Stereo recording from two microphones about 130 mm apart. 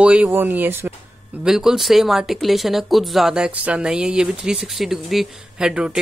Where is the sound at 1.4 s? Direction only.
5° right (ahead or behind).